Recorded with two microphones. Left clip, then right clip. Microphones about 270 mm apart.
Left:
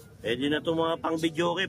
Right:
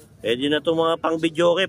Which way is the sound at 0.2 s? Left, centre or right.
Centre.